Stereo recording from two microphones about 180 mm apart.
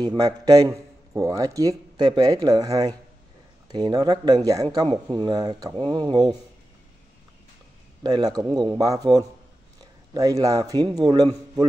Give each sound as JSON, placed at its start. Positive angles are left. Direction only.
{"t": 0.0, "sound": "a man's voice", "side_deg": -20}
{"t": 8.0, "sound": "a man's voice", "side_deg": -20}